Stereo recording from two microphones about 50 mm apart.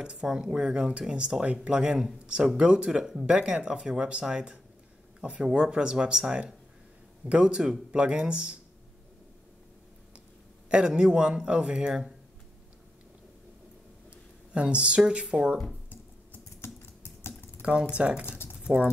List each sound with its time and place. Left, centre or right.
0.0 s speech: centre
10.7 s speech: centre
14.5 s speech: right
16.6 s typing: left
17.6 s a sound: right
17.9 s speech: right
18.6 s typing: right